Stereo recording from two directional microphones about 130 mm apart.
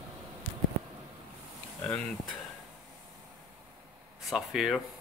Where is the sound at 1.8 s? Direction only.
10° left (ahead or behind).